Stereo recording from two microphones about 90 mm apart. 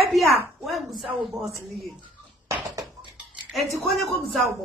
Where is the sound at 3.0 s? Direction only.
65° right (ahead or behind).